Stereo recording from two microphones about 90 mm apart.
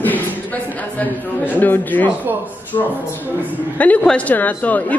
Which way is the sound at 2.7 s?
55° left (ahead or behind).